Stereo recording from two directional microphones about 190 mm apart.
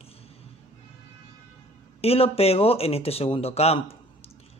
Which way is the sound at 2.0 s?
30° left (ahead or behind).